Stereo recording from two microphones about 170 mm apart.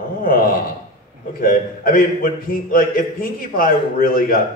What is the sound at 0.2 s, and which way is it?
A man's voice, 60° left (ahead or behind).